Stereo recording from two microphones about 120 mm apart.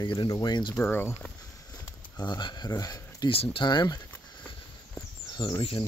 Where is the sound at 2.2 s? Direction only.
40° left (ahead or behind).